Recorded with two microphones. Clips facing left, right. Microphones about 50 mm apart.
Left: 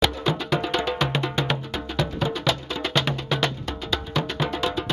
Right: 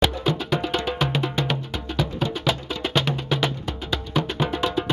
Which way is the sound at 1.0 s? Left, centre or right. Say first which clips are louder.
Even; centre.